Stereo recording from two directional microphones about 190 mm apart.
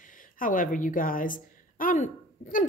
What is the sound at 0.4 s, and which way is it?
A woman's voice, 45° left (ahead or behind).